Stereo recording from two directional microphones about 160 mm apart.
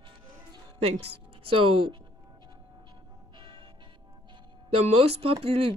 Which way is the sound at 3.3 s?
30° right (ahead or behind).